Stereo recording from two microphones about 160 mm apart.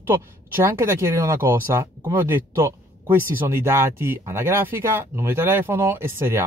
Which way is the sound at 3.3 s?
15° right (ahead or behind).